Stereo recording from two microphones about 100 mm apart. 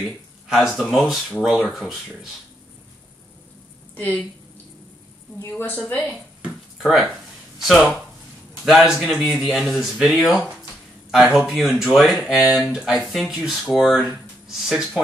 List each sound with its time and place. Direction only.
0.0 s speech: 5° right (ahead or behind)
3.9 s a woman's voice: 15° left (ahead or behind)
5.6 s a woman's voice: 20° left (ahead or behind)
6.8 s speech: centre (ahead or behind)